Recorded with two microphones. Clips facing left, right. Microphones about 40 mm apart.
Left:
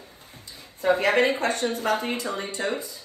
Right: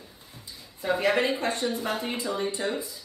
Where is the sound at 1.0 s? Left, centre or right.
Left.